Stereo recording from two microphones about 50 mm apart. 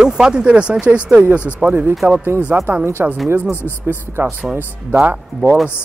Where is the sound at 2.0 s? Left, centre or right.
Right.